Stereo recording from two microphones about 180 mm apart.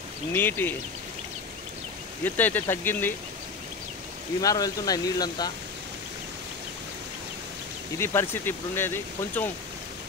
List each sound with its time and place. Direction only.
0.3 s speech: 10° left (ahead or behind)
2.2 s speech: 10° left (ahead or behind)
4.4 s speech: 20° left (ahead or behind)
8.0 s speech: 15° left (ahead or behind)